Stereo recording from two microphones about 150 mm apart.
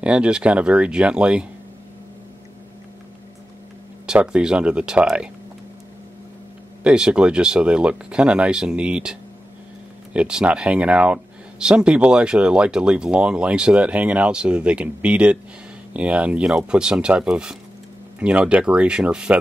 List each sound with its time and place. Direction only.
0.0 s speech: 5° right (ahead or behind)
4.0 s speech: 5° right (ahead or behind)
6.8 s speech: 5° right (ahead or behind)